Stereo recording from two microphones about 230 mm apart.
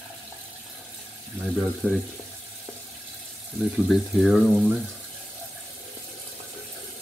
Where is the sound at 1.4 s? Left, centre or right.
Centre.